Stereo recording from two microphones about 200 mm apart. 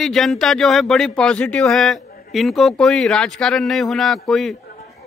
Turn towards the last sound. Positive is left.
turn(degrees=0)  # may be behind; listen again after turning